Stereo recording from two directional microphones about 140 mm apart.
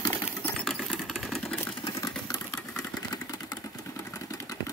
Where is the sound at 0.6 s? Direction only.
Centre (ahead or behind).